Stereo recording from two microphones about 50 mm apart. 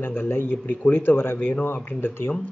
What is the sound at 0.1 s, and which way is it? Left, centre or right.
Speech, left.